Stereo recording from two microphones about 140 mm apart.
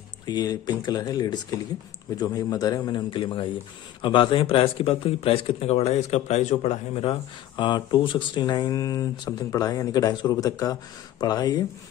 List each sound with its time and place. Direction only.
0.3 s a man's voice: 30° left (ahead or behind)